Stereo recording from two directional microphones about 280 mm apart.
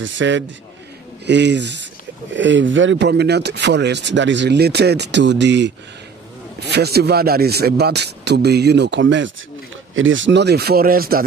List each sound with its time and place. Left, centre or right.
0.0 s speech: right
6.7 s speech: right